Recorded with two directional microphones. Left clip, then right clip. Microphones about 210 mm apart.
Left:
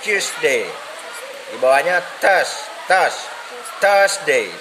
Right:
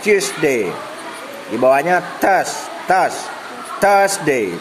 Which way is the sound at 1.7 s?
15° right (ahead or behind).